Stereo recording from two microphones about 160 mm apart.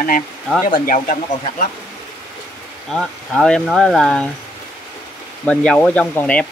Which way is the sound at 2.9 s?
Centre (ahead or behind).